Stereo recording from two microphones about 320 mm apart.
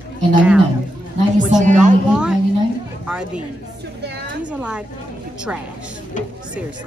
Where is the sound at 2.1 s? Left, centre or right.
Centre.